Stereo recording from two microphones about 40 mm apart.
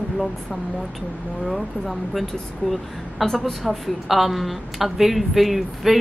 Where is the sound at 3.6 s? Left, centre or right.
Centre.